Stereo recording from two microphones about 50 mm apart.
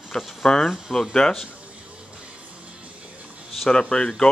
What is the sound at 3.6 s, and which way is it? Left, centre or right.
Speech, centre.